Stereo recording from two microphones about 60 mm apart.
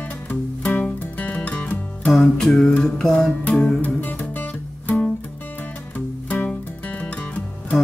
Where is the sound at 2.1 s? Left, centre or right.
Centre.